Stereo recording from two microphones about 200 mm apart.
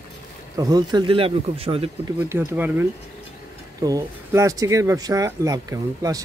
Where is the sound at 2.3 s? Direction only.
10° right (ahead or behind).